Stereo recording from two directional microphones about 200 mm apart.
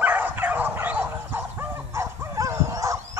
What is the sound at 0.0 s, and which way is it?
Bow-wow, 10° right (ahead or behind).